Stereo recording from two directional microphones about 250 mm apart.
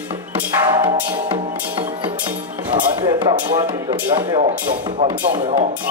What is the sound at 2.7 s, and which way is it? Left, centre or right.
Speech, centre.